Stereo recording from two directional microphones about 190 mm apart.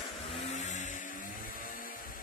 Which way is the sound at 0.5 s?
40° left (ahead or behind).